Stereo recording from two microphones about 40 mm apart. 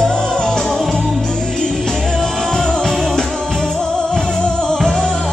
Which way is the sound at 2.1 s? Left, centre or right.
Centre.